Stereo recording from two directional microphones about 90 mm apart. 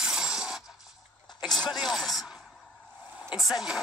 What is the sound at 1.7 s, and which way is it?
Speech, centre (ahead or behind).